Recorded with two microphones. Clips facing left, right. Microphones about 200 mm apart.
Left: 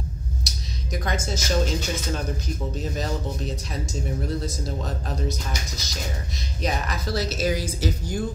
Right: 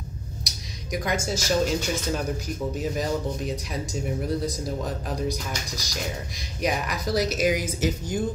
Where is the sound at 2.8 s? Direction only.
10° right (ahead or behind).